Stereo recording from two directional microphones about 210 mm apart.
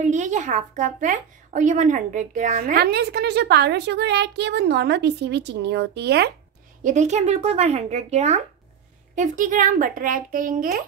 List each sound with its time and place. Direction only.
0.0 s a woman's voice: 35° right (ahead or behind); by 6.3 s 50° right (ahead or behind)
6.8 s a child's voice: 35° right (ahead or behind)